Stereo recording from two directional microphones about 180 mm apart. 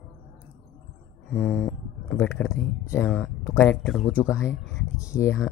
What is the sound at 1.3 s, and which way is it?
Speech, 10° left (ahead or behind).